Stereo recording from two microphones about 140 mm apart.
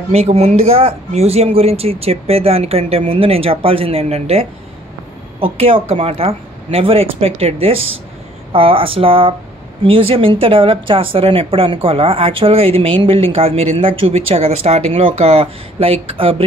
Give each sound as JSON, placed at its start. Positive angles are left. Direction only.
{"t": 0.1, "sound": "a woman's voice", "side_deg": -45}